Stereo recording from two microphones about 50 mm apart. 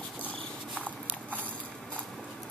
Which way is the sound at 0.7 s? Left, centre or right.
Right.